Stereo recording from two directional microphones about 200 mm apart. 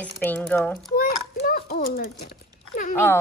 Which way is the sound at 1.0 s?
45° left (ahead or behind).